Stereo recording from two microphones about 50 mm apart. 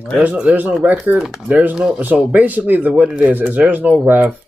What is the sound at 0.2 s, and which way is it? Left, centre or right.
Speech, right.